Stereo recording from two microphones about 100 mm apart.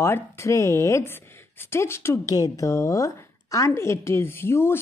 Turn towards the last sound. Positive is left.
turn(degrees=25)  # may be behind; listen again after turning